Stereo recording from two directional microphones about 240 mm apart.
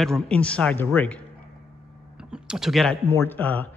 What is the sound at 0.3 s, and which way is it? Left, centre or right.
A man's voice, centre.